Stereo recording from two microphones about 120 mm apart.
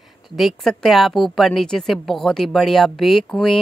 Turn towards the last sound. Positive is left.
turn(degrees=0)  # may be behind; listen again after turning